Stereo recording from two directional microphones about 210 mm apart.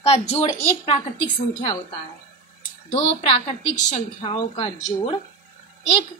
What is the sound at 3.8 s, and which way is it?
A woman's voice, 30° left (ahead or behind).